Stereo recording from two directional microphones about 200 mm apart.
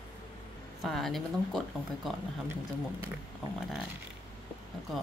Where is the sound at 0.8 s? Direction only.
Centre (ahead or behind).